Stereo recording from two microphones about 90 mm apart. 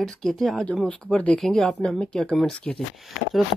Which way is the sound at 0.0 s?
5° left (ahead or behind).